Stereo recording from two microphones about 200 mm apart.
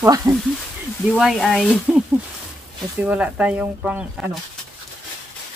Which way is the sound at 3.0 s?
5° right (ahead or behind).